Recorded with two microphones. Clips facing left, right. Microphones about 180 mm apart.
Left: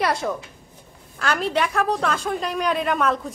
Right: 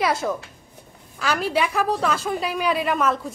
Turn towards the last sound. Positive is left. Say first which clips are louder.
# even
turn(degrees=0)  # may be behind; listen again after turning